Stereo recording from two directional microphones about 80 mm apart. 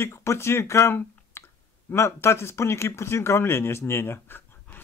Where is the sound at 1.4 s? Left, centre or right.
Left.